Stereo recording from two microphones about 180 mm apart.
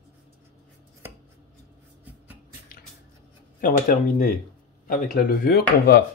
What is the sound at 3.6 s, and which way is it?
Speech, 50° left (ahead or behind).